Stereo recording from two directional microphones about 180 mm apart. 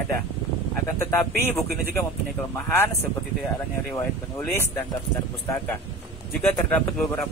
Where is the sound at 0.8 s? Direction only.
10° left (ahead or behind).